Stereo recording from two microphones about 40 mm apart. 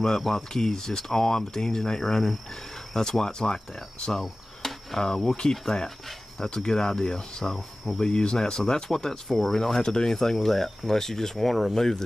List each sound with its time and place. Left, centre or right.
0.3 s speech: centre